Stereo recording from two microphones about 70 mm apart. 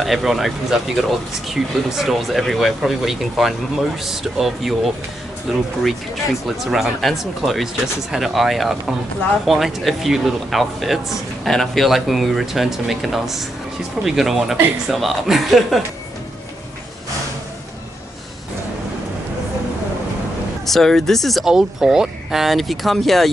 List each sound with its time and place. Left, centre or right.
0.0 s speech: centre
20.6 s speech: centre